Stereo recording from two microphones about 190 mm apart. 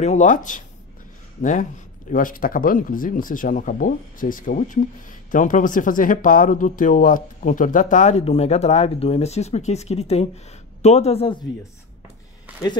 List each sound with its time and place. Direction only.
0.0 s speech: 40° left (ahead or behind)